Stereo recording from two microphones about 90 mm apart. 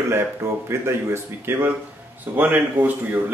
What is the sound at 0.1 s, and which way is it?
Speech, 30° right (ahead or behind).